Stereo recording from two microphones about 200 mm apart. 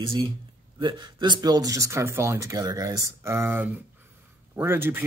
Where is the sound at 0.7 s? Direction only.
25° right (ahead or behind).